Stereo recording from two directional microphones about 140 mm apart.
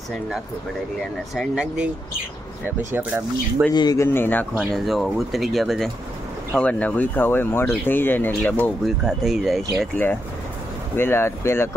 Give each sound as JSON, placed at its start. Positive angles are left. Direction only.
{"t": 1.3, "sound": "speech", "side_deg": -5}
{"t": 2.9, "sound": "speech", "side_deg": -15}
{"t": 3.7, "sound": "speech", "side_deg": 25}
{"t": 4.7, "sound": "speech", "side_deg": 0}
{"t": 8.8, "sound": "speech", "side_deg": 0}
{"t": 11.0, "sound": "speech", "side_deg": 15}